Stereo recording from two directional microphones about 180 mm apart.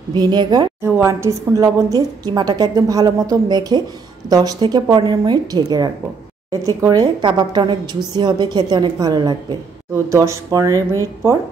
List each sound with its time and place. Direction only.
0.1 s a woman's voice: 25° right (ahead or behind)
0.8 s a woman's voice: 15° right (ahead or behind)